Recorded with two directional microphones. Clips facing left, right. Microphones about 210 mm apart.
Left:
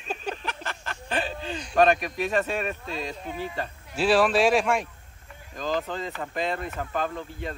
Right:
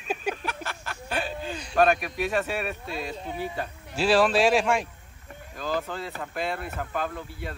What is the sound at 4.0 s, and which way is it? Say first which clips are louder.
A man's voice: even; centre (ahead or behind).